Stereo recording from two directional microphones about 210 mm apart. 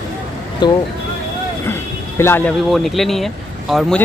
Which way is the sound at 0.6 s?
20° left (ahead or behind).